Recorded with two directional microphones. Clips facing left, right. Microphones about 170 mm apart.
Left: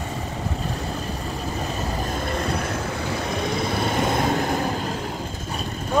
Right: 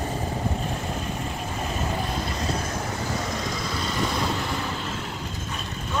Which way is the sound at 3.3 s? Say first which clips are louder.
Left 5 dB; 60° left (ahead or behind).